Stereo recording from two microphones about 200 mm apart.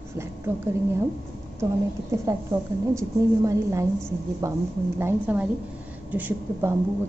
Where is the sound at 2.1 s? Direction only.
15° right (ahead or behind).